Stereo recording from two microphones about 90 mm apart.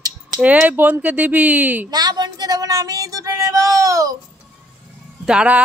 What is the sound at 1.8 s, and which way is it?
Speech, 50° right (ahead or behind).